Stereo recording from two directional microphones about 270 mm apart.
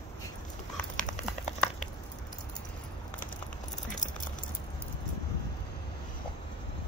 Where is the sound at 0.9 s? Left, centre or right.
Left.